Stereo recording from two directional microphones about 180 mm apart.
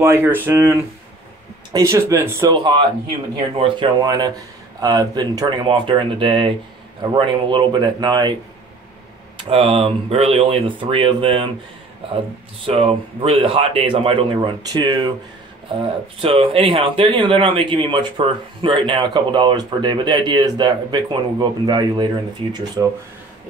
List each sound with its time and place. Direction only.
0.0 s speech: 15° right (ahead or behind)
2.5 s a man's voice: 25° right (ahead or behind)
9.4 s a man's voice: 30° right (ahead or behind)
12.6 s a man's voice: 30° right (ahead or behind)